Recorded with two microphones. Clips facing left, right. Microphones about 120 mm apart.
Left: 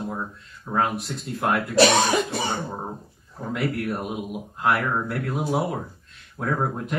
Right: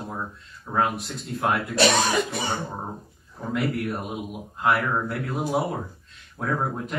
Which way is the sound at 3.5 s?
Centre (ahead or behind).